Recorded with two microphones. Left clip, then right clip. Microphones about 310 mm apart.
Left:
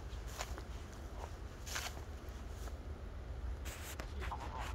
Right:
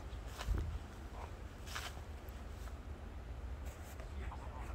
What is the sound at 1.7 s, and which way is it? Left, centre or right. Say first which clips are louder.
Boat: left 3 dB; left.